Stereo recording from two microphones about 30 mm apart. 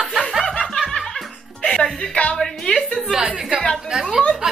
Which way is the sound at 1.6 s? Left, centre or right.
Left.